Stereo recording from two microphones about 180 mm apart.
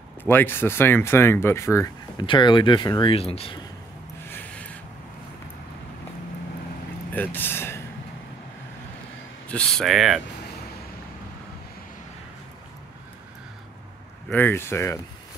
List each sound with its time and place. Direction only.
0.2 s speech: 10° left (ahead or behind)
2.2 s speech: 25° left (ahead or behind)
4.3 s a sound: 10° left (ahead or behind)
7.1 s speech: 10° left (ahead or behind)
9.5 s speech: 5° left (ahead or behind)
14.3 s speech: 10° left (ahead or behind)